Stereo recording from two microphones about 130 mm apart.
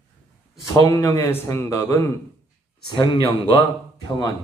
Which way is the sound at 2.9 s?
40° left (ahead or behind).